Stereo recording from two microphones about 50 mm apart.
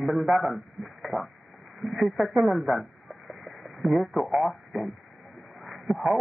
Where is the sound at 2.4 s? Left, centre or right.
Centre.